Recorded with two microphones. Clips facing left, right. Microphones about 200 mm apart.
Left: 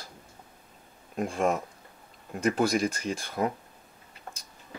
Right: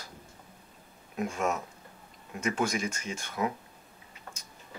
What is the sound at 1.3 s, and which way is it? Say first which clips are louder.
Speech: left 5 dB; 30° left (ahead or behind).